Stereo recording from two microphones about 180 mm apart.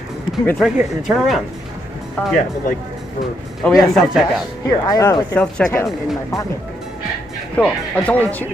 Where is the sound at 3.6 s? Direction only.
Centre (ahead or behind).